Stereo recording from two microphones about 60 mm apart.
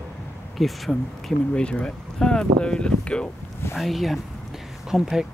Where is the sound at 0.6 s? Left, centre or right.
Centre.